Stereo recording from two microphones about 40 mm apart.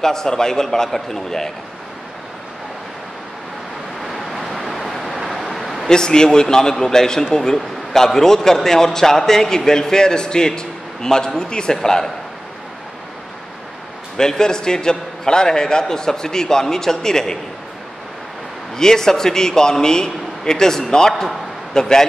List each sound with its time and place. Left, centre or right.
0.0 s a man's voice: centre
4.0 s vehicle: centre
5.6 s a sound: centre
5.9 s a man's voice: centre
14.1 s a man's voice: centre
18.8 s a man's voice: centre